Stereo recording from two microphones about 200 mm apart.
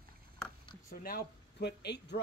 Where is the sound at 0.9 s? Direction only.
50° left (ahead or behind).